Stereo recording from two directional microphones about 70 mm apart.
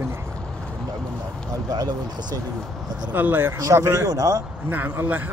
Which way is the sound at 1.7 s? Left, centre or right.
Right.